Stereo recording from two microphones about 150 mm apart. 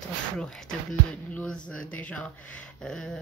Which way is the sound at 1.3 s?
10° left (ahead or behind).